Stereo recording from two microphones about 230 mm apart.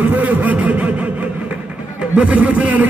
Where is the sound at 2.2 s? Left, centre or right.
Centre.